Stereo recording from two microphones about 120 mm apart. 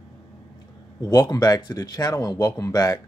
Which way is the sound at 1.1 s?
35° left (ahead or behind).